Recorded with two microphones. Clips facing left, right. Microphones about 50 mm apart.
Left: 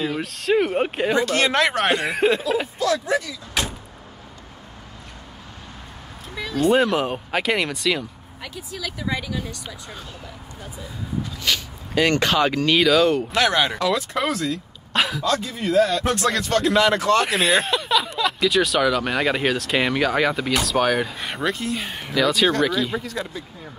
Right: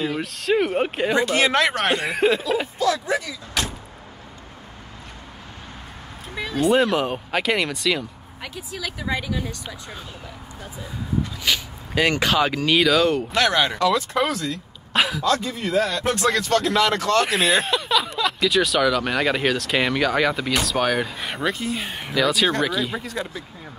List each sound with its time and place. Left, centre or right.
0.0 s speech: centre
6.3 s music: centre
6.6 s speech: centre
8.4 s speech: right
11.4 s speech: centre